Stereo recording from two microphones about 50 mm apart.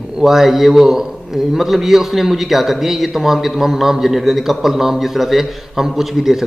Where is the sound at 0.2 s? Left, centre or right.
Centre.